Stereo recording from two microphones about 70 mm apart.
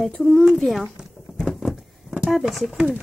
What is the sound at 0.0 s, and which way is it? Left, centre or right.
Speech, centre.